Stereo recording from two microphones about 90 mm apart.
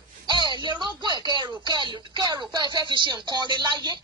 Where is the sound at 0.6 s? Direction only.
55° right (ahead or behind).